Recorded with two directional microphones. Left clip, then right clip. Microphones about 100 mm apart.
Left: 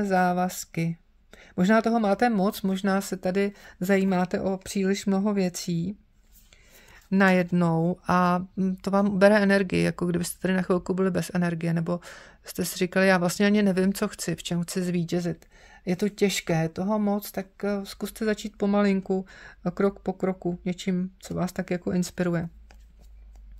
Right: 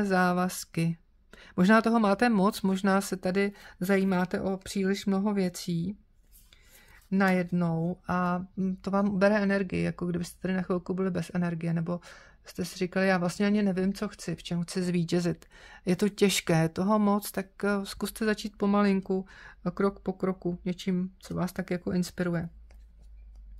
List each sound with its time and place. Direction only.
0.0 s speech: 5° right (ahead or behind); by 5.9 s 25° left (ahead or behind)
7.1 s speech: 35° left (ahead or behind)
7.5 s speech: 55° left (ahead or behind)
8.1 s speech: 45° left (ahead or behind)
8.5 s speech: 30° left (ahead or behind)
14.8 s speech: centre (ahead or behind)
15.0 s speech: 25° right (ahead or behind)
18.2 s speech: 5° right (ahead or behind); by 22.5 s 30° left (ahead or behind)